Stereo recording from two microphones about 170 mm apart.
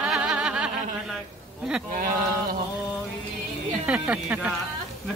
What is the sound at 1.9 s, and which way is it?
Speech, 50° right (ahead or behind).